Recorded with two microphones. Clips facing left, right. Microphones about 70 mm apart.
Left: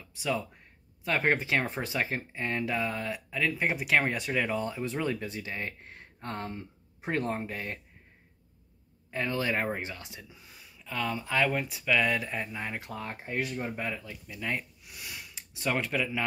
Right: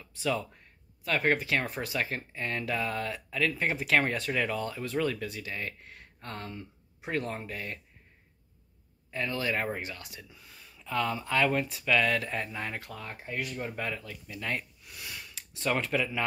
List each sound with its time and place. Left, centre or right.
0.2 s speech: centre
1.0 s speech: left
9.1 s speech: left
10.8 s speech: centre
12.9 s speech: left
13.8 s speech: centre